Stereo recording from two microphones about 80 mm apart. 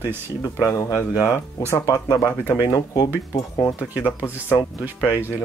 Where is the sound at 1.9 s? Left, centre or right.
Left.